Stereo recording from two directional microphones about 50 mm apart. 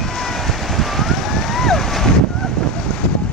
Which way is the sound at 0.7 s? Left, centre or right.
Centre.